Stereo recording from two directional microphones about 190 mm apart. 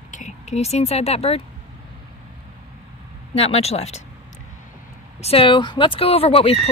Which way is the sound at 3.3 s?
35° left (ahead or behind).